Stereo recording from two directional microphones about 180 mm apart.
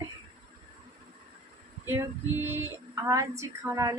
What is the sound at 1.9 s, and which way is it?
A woman's voice, 15° right (ahead or behind).